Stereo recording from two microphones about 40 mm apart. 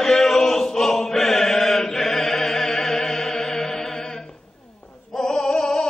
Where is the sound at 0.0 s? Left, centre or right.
Centre.